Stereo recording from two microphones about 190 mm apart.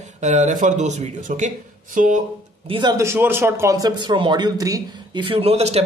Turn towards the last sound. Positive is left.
turn(degrees=-35)  # may be behind; listen again after turning